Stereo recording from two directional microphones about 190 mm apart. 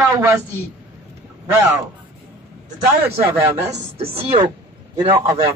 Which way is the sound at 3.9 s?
30° right (ahead or behind).